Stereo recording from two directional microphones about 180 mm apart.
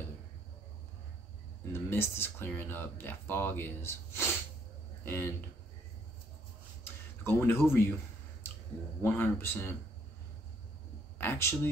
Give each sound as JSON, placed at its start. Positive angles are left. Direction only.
{"t": 1.7, "sound": "speech", "side_deg": 15}
{"t": 7.2, "sound": "speech", "side_deg": 10}
{"t": 9.0, "sound": "speech", "side_deg": 10}
{"t": 11.1, "sound": "speech", "side_deg": 15}